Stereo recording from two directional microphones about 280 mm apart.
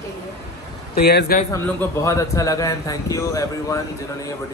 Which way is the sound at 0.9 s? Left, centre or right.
Left.